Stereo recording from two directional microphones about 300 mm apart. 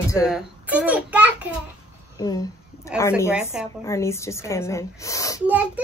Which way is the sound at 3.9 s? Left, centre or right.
Centre.